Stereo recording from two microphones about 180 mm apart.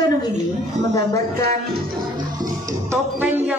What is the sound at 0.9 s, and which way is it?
Speech, 20° left (ahead or behind).